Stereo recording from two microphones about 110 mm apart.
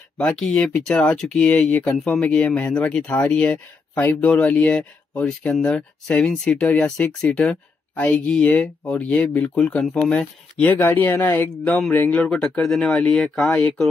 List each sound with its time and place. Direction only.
0.2 s speech: 5° left (ahead or behind)